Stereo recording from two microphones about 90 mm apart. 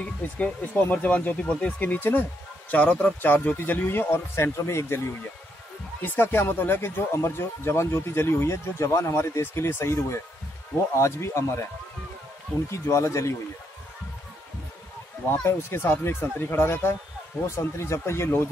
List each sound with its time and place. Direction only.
0.0 s speech: 15° left (ahead or behind)
6.0 s speech: 25° left (ahead or behind)
12.7 s speech: 35° left (ahead or behind)
15.2 s speech: 30° left (ahead or behind)